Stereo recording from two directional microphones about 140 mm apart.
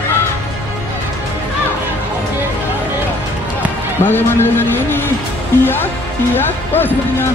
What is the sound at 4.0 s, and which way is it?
Speech, 15° left (ahead or behind).